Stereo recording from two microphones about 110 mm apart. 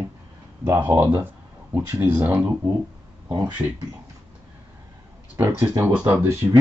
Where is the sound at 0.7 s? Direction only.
20° right (ahead or behind).